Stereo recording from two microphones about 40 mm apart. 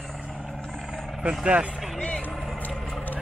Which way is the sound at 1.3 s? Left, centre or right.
Right.